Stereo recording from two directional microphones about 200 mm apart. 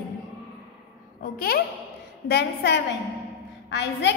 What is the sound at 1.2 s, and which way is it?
Speech, 50° left (ahead or behind).